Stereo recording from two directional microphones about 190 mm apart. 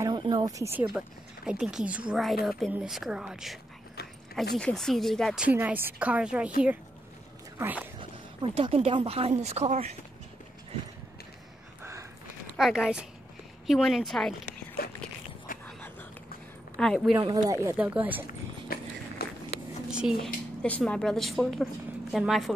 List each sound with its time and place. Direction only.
0.0 s a woman's voice: 25° right (ahead or behind); by 3.5 s 5° right (ahead or behind)
4.6 s a woman's voice: 5° left (ahead or behind)
7.5 s speech: 10° right (ahead or behind)
8.0 s speech: 25° right (ahead or behind)
11.8 s a sound: 15° right (ahead or behind)
12.5 s a woman's voice: 5° right (ahead or behind)
15.6 s a sound: 10° left (ahead or behind)
16.7 s speech: centre (ahead or behind)
17.2 s speech: 20° right (ahead or behind)
18.2 s dog: 50° left (ahead or behind)
19.9 s a sound: 5° right (ahead or behind)
20.6 s a woman's voice: 5° left (ahead or behind)